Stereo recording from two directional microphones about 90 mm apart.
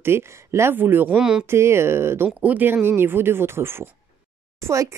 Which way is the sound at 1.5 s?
30° right (ahead or behind).